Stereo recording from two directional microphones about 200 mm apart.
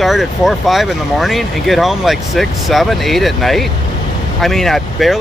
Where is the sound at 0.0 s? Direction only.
Centre (ahead or behind).